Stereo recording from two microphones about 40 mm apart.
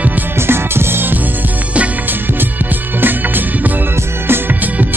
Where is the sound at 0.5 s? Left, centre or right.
Right.